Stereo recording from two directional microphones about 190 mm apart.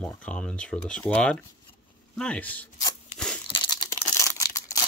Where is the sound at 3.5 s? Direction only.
25° left (ahead or behind).